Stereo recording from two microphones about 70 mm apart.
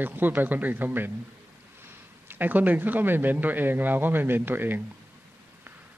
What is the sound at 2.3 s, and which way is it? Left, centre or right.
A man's voice, right.